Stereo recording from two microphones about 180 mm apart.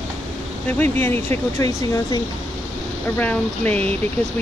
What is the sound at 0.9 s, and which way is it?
Speech, 15° left (ahead or behind).